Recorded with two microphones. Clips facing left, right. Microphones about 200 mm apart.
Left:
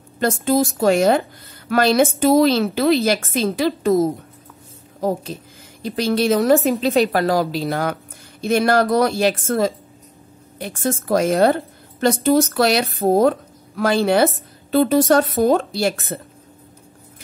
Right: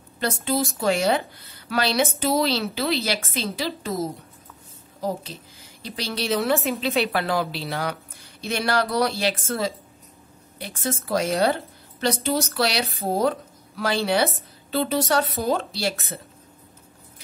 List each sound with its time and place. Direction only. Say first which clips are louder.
0.2 s a woman's voice: left 7 dB; 45° left (ahead or behind)
6.6 s a woman's voice: left 7 dB; 35° left (ahead or behind)